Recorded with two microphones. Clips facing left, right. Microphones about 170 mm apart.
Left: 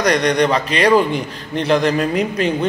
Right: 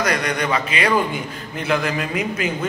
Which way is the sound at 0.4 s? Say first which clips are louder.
Left 6 dB; 35° left (ahead or behind).